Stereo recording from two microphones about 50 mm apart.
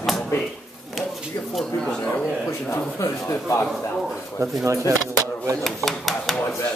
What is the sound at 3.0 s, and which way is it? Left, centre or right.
Speech, left.